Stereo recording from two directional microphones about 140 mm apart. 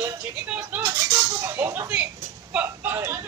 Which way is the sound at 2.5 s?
15° right (ahead or behind).